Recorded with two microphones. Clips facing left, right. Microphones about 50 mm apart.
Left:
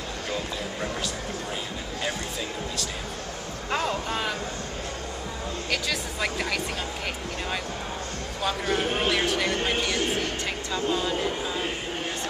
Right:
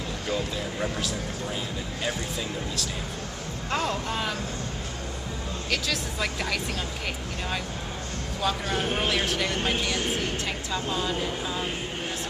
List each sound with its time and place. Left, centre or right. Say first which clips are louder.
0.3 s speech: right 2 dB; centre
3.7 s speech: left 1 dB; centre
5.7 s speech: right 1 dB; centre
8.4 s speech: left 1 dB; centre